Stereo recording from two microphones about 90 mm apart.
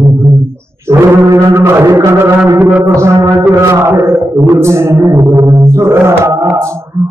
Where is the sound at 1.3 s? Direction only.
35° right (ahead or behind).